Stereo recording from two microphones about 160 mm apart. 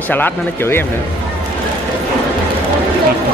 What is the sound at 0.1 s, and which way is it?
Speech, 15° left (ahead or behind).